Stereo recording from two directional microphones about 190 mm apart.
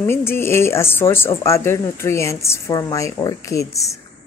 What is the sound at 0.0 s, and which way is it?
A woman's voice, 10° left (ahead or behind).